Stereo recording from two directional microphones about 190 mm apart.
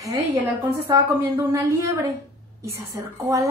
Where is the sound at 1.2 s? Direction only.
15° right (ahead or behind).